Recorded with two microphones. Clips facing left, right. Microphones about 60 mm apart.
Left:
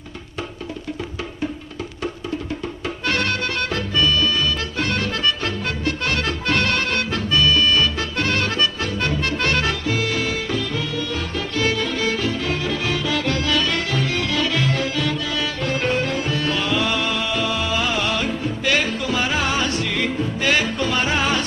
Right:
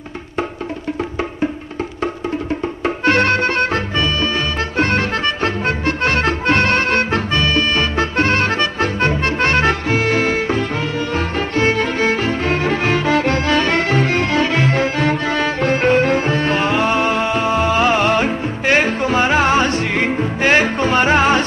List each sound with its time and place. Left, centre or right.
2.8 s music: right